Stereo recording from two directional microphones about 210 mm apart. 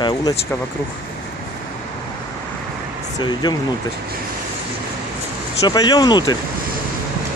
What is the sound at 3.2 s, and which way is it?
Speech, 20° left (ahead or behind).